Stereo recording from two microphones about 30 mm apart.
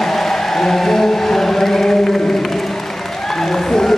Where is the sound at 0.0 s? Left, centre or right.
Centre.